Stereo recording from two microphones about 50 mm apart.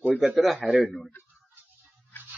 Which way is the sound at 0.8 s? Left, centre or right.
Centre.